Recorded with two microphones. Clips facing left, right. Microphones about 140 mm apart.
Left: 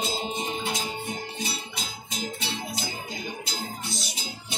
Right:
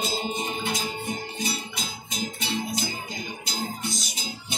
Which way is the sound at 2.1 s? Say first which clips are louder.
Right 3 dB; 30° left (ahead or behind).